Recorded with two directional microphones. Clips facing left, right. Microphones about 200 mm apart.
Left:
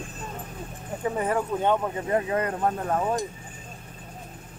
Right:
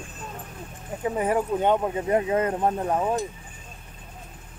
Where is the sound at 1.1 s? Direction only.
10° right (ahead or behind).